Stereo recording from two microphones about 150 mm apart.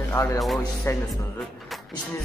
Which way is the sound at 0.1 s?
20° left (ahead or behind).